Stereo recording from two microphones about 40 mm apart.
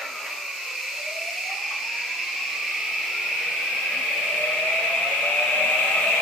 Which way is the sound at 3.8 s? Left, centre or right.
Centre.